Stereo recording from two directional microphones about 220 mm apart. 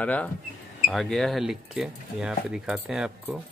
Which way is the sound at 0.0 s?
5° left (ahead or behind).